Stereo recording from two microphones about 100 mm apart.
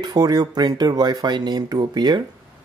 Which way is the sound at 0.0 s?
40° right (ahead or behind).